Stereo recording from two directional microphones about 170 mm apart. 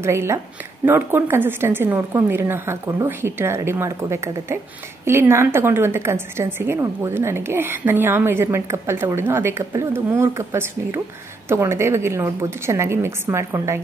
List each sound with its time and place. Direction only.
0.0 s a woman's voice: 15° right (ahead or behind)